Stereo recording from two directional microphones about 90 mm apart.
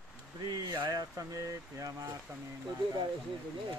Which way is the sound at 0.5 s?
55° right (ahead or behind).